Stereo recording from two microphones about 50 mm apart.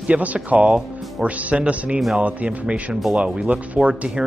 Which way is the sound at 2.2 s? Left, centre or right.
Right.